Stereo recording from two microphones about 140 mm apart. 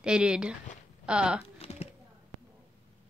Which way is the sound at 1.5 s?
50° left (ahead or behind).